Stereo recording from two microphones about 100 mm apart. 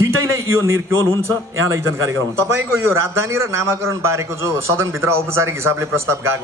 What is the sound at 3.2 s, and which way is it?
A man's voice, 25° right (ahead or behind).